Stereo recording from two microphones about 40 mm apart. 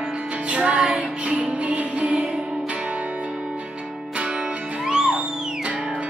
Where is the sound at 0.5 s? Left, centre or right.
Right.